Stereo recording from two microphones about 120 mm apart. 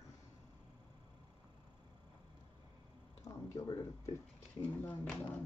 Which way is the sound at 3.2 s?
30° left (ahead or behind).